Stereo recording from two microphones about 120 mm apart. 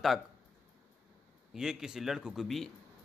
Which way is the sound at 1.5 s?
5° right (ahead or behind).